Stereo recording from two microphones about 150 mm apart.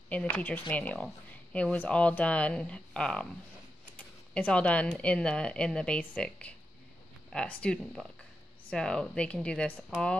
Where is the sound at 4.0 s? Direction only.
10° left (ahead or behind).